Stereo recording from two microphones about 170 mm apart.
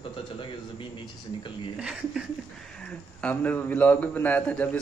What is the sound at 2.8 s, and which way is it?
A man's voice, 5° left (ahead or behind).